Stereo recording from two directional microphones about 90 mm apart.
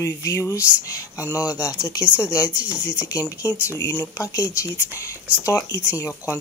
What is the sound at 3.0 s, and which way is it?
Speech, 40° left (ahead or behind).